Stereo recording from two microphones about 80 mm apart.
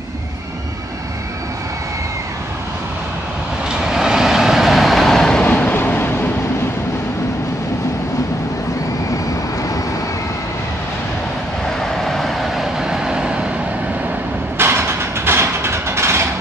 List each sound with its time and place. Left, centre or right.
3.8 s vehicle: centre
5.5 s vehicle: left
12.0 s vehicle: centre
14.6 s a sound: right